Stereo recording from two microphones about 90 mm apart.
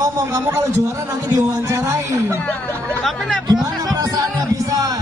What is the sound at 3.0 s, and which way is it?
Music, 5° left (ahead or behind).